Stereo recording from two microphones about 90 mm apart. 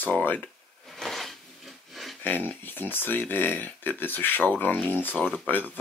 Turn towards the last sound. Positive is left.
turn(degrees=20)  # may be behind; listen again after turning